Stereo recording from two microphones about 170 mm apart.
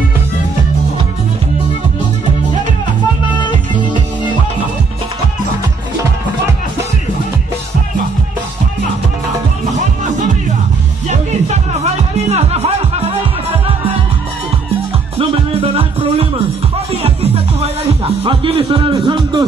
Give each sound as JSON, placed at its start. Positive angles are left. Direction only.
{"t": 3.3, "sound": "music", "side_deg": 25}
{"t": 11.1, "sound": "music", "side_deg": -40}
{"t": 15.1, "sound": "music", "side_deg": -35}